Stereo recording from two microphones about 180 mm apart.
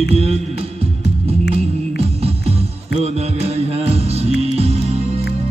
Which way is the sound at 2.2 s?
35° right (ahead or behind).